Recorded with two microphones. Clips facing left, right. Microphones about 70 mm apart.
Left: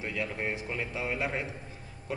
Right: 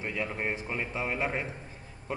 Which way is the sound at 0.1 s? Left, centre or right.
Centre.